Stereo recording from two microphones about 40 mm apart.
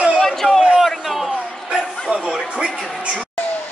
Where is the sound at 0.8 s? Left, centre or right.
Centre.